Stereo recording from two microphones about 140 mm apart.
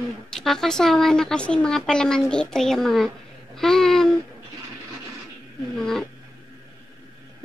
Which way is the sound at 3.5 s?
5° left (ahead or behind).